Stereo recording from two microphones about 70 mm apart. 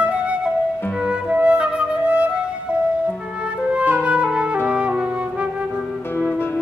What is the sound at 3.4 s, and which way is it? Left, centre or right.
Music, centre.